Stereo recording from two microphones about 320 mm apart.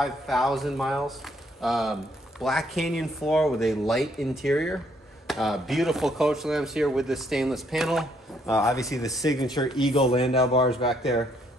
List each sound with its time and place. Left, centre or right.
0.0 s speech: centre
8.5 s speech: centre
9.7 s speech: centre
10.1 s speech: centre